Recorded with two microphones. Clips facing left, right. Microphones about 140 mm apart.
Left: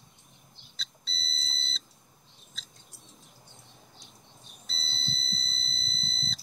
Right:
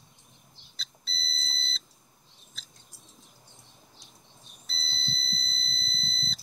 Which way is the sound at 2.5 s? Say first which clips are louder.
Left 1 dB; centre (ahead or behind).